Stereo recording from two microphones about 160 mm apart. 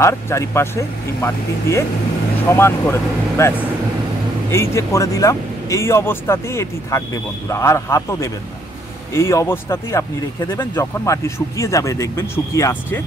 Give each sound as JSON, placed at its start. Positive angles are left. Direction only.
{"t": 0.0, "sound": "speech", "side_deg": 15}